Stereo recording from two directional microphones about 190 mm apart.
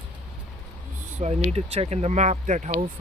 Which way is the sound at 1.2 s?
35° right (ahead or behind).